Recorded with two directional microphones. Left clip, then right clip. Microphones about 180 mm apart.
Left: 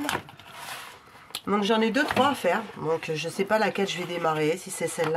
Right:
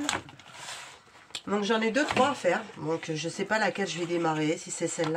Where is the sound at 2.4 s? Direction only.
45° left (ahead or behind).